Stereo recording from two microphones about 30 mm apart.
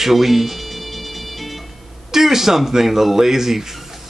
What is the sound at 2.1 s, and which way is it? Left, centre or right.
A man's voice, centre.